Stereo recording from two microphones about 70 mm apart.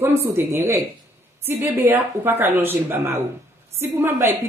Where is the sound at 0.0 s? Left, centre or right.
Right.